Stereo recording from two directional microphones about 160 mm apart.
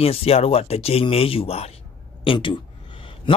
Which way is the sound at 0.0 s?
40° left (ahead or behind).